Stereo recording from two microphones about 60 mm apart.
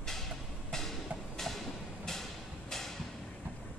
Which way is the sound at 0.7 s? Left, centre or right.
Centre.